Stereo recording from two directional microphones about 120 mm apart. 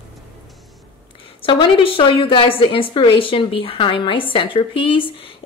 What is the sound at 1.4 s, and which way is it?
A woman's voice, 45° left (ahead or behind).